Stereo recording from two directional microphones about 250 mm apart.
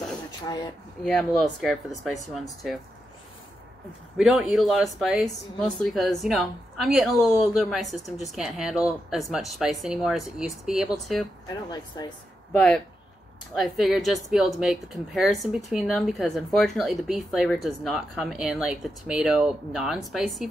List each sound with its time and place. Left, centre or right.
0.5 s speech: centre
1.0 s speech: centre
4.2 s speech: centre
11.4 s speech: centre
12.5 s speech: centre